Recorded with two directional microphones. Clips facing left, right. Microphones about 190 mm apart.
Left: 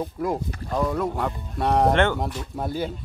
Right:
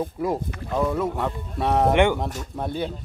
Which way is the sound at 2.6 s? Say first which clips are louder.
Even; 5° left (ahead or behind).